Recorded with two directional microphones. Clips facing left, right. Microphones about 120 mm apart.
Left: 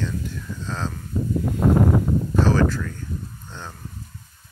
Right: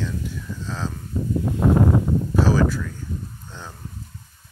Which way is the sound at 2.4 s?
10° right (ahead or behind).